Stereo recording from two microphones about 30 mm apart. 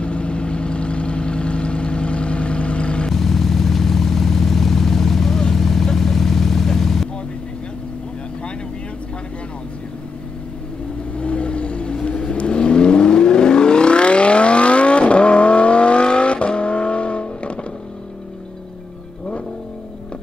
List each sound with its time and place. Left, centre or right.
0.0 s vehicle: left
3.1 s vehicle: centre
11.1 s vehicle: left